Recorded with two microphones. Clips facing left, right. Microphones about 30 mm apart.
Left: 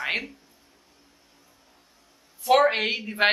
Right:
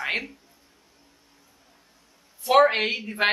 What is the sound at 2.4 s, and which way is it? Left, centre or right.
Speech, centre.